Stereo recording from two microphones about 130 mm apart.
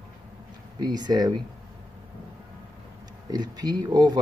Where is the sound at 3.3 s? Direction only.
30° right (ahead or behind).